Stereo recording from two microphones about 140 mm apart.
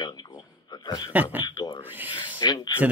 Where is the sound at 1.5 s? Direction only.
25° left (ahead or behind).